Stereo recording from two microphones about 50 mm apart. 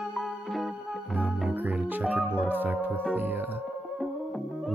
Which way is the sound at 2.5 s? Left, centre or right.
Right.